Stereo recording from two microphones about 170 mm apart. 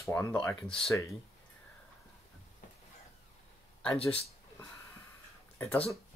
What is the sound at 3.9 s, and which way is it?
Speech, 35° left (ahead or behind).